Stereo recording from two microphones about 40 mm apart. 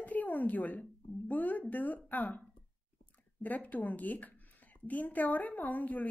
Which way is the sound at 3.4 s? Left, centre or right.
Left.